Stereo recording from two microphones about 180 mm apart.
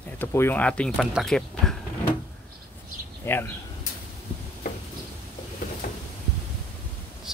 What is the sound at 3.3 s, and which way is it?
Speech, 10° left (ahead or behind).